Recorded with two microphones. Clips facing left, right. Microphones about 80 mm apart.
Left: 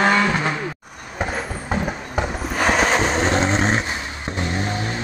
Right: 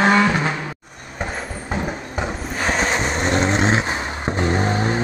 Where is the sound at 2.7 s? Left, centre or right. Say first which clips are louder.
Left 2 dB; centre.